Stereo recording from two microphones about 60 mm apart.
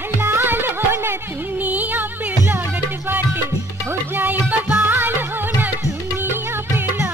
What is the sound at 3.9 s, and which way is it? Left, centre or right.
Music, right.